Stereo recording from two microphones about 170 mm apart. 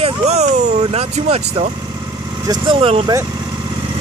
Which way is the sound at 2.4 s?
25° right (ahead or behind).